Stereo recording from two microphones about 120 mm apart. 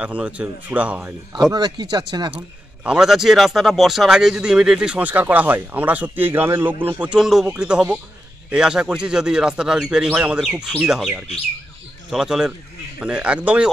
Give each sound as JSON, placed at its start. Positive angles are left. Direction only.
{"t": 0.0, "sound": "a man's voice", "side_deg": -10}
{"t": 1.3, "sound": "speech", "side_deg": -35}
{"t": 2.3, "sound": "a man's voice", "side_deg": -10}
{"t": 7.2, "sound": "a man's voice", "side_deg": -5}